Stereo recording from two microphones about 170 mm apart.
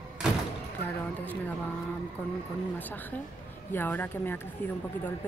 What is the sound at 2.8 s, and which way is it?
Speech, 10° left (ahead or behind).